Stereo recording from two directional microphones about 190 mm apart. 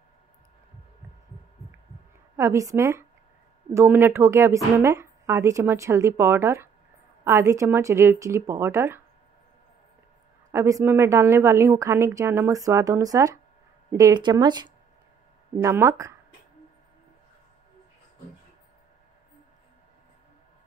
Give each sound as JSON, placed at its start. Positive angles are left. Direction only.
{"t": 2.3, "sound": "a woman's voice", "side_deg": -15}
{"t": 10.5, "sound": "a woman's voice", "side_deg": -15}